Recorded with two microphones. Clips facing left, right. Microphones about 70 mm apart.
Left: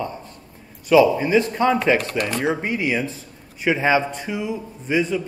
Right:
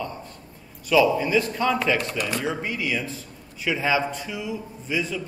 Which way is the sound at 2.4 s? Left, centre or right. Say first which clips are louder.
Left 5 dB; left.